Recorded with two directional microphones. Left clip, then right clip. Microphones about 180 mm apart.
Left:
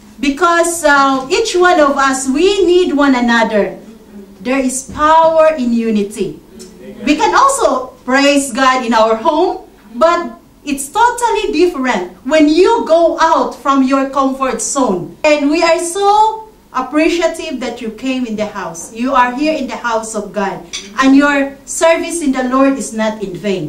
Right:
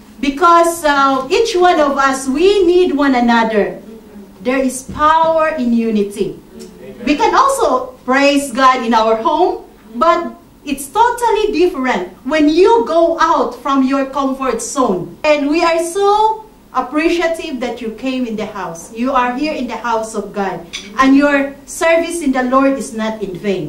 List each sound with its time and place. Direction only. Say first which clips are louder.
0.2 s a woman's voice: right 2 dB; 20° left (ahead or behind)
10.9 s a woman's voice: left 1 dB; 20° left (ahead or behind)